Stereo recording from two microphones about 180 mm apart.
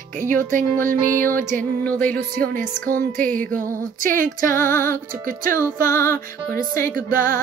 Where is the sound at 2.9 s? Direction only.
50° right (ahead or behind).